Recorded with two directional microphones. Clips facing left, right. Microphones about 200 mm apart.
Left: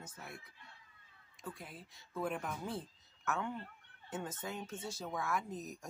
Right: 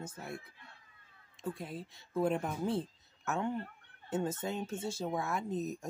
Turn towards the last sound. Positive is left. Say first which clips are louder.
# right 6 dB
turn(degrees=-25)  # may be behind; listen again after turning